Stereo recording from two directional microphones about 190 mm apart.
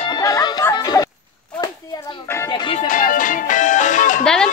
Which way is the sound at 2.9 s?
45° left (ahead or behind).